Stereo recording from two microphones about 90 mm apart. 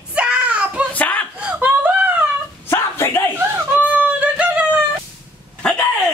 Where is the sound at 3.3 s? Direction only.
25° right (ahead or behind).